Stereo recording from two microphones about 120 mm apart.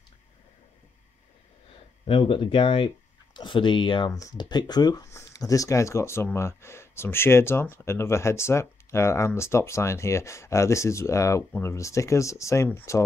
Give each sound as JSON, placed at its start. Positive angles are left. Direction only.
{"t": 2.0, "sound": "speech", "side_deg": 45}
{"t": 4.1, "sound": "speech", "side_deg": 30}